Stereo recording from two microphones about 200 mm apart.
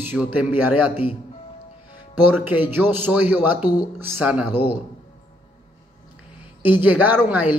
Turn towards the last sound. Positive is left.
turn(degrees=-10)  # may be behind; listen again after turning